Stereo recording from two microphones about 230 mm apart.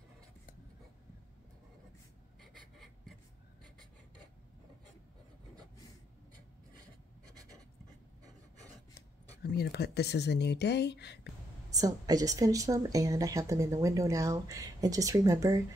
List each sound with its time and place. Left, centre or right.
2.4 s writing: centre
9.4 s speech: left
11.7 s a woman's voice: centre